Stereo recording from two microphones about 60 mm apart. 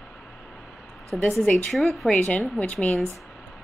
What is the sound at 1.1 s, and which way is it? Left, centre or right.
Speech, left.